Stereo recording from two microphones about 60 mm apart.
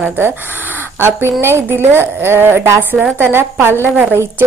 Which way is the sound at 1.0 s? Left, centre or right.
Right.